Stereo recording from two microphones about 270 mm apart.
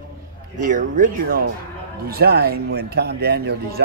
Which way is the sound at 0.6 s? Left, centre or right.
Right.